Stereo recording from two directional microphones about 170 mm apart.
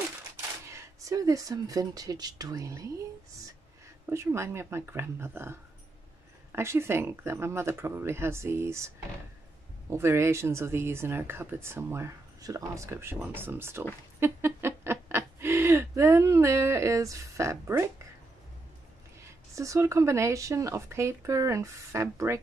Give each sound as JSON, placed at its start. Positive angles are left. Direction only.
{"t": 0.7, "sound": "speech", "side_deg": -15}
{"t": 4.0, "sound": "speech", "side_deg": -15}
{"t": 19.5, "sound": "speech", "side_deg": -20}